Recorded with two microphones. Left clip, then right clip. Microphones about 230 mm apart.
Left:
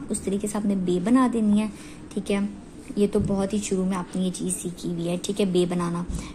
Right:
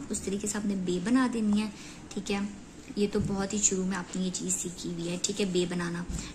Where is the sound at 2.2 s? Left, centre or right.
Left.